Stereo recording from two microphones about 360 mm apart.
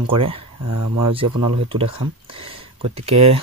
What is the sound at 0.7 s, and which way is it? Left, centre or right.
Speech, right.